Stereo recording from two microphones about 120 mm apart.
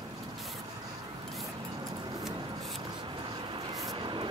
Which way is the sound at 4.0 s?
45° right (ahead or behind).